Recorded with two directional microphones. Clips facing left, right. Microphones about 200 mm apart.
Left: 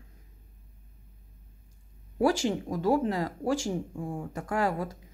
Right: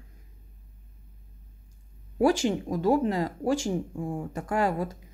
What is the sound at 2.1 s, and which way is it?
Speech, 20° right (ahead or behind).